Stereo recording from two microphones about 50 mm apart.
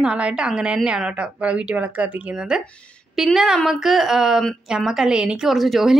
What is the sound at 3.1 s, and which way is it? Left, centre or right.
A woman's voice, centre.